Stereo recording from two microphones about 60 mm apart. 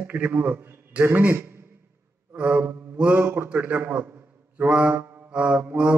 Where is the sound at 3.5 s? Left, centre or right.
Right.